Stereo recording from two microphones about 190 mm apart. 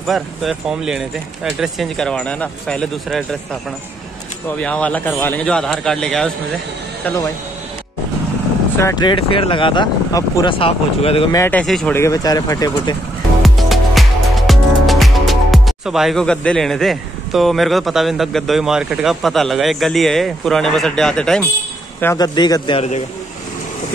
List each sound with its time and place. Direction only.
0.0 s speech: centre (ahead or behind)
4.6 s speech: 5° left (ahead or behind)
8.7 s speech: 20° left (ahead or behind)
11.3 s speech: 10° left (ahead or behind)
12.0 s speech: 20° left (ahead or behind)
13.4 s music: centre (ahead or behind)
22.0 s speech: 20° left (ahead or behind)